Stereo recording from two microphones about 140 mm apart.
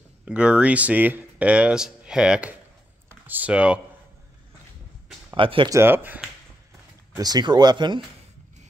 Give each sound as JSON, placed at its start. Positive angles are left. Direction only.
{"t": 0.2, "sound": "speech", "side_deg": -10}
{"t": 5.3, "sound": "speech", "side_deg": -35}
{"t": 5.7, "sound": "speech", "side_deg": -15}
{"t": 7.2, "sound": "speech", "side_deg": -30}